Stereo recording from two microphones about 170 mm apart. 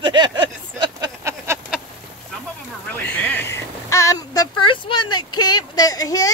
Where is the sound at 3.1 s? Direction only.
10° left (ahead or behind).